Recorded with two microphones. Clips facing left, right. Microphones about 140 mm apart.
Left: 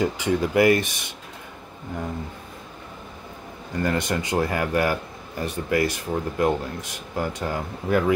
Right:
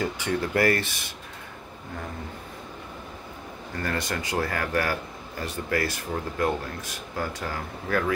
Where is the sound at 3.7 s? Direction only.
20° left (ahead or behind).